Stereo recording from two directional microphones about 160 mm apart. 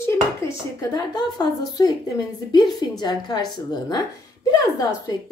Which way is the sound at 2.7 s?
25° left (ahead or behind).